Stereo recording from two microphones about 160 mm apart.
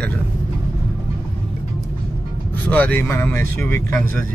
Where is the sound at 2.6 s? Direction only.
10° left (ahead or behind).